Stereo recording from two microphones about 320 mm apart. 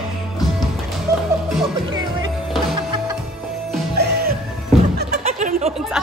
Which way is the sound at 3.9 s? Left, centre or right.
Right.